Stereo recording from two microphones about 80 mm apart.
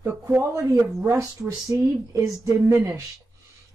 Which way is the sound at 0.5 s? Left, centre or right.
Right.